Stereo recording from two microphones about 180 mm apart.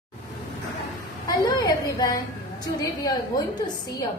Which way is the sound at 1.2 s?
20° left (ahead or behind).